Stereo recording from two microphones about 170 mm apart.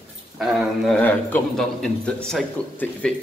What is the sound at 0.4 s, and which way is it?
A man's voice, centre (ahead or behind).